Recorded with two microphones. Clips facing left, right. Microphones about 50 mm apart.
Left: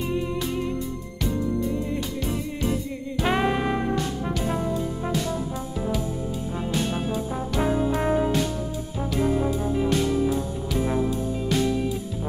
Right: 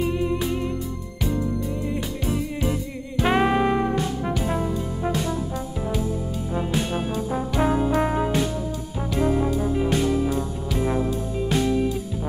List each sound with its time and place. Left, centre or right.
0.0 s music: centre
2.6 s music: centre
4.3 s brass instrument: centre
6.5 s music: centre
7.2 s brass instrument: centre
8.0 s music: centre
9.1 s brass instrument: centre
9.6 s music: centre